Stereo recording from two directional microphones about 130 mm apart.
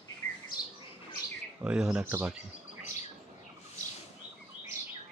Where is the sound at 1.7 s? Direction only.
5° right (ahead or behind).